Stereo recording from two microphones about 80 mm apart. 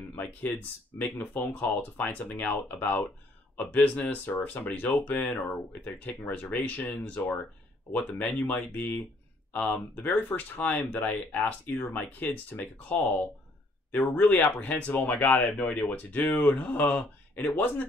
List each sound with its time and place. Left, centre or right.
0.1 s speech: left
13.9 s speech: centre